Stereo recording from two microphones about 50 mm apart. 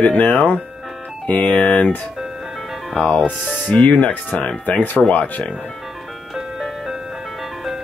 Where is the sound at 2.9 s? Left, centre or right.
Left.